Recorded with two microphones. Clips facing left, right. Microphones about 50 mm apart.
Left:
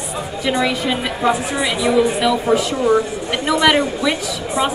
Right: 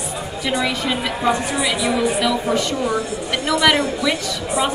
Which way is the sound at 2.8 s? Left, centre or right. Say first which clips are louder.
Left 5 dB; left.